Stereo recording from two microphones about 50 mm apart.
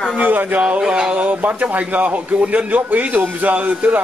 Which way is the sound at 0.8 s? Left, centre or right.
Centre.